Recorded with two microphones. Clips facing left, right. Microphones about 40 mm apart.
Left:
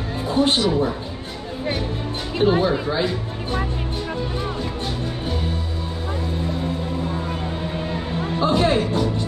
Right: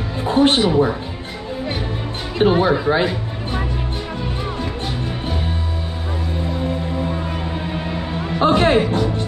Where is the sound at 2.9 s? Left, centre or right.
Right.